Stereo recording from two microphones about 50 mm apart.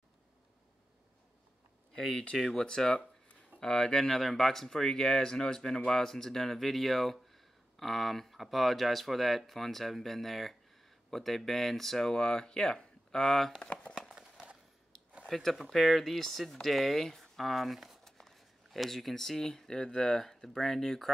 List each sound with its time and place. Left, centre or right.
2.0 s speech: centre
2.6 s speech: centre
13.6 s a sound: centre
14.0 s clip-clop: centre
15.2 s speech: centre